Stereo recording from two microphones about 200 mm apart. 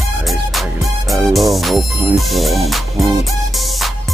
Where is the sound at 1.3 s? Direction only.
Centre (ahead or behind).